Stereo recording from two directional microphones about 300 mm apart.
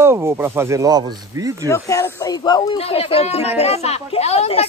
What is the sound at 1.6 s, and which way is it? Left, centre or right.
A woman's voice, centre.